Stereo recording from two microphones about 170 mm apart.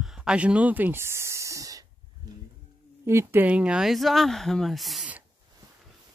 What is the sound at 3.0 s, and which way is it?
Speech, 15° right (ahead or behind).